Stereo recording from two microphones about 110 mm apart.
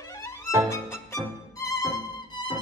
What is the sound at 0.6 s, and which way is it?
Violin, 25° left (ahead or behind).